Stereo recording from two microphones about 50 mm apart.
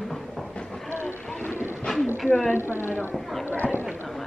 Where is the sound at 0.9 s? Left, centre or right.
Left.